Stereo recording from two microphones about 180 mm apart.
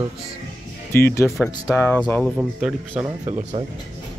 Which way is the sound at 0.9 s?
15° left (ahead or behind).